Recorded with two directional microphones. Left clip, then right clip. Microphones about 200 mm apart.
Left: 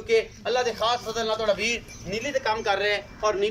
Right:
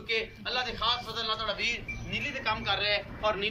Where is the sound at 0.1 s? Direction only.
40° left (ahead or behind).